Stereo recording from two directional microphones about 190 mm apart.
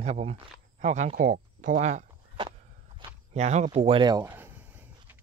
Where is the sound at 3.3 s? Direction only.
35° right (ahead or behind).